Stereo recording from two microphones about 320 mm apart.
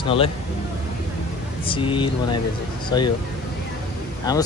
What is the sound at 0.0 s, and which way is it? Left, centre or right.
Speech, centre.